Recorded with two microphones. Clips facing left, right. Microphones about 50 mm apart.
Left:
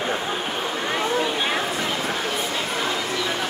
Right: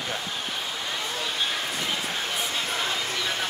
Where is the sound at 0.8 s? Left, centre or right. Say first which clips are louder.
Left 11 dB; left.